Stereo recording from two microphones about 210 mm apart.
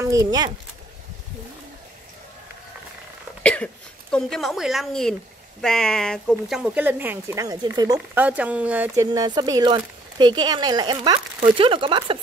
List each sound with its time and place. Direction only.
0.0 s speech: 15° right (ahead or behind)
3.4 s speech: 5° left (ahead or behind); by 12.2 s 25° right (ahead or behind)